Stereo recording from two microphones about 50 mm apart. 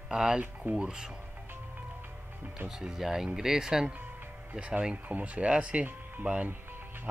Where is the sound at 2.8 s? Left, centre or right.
Centre.